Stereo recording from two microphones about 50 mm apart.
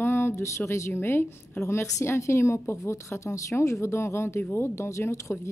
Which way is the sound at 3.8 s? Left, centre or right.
Left.